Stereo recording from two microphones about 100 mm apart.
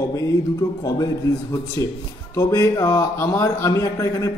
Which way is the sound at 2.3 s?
35° left (ahead or behind).